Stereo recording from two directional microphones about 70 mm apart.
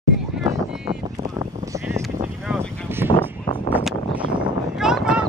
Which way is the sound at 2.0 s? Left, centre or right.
Centre.